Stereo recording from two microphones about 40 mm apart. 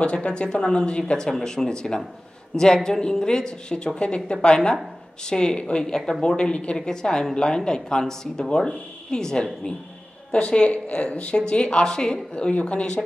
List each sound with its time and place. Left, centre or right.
0.0 s speech: left
10.3 s speech: left